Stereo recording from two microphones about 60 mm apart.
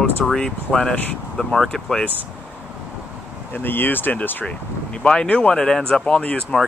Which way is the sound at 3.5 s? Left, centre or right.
Left.